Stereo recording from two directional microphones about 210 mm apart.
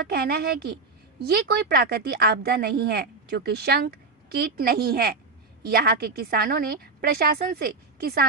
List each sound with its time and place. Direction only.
0.0 s a woman's voice: 50° right (ahead or behind)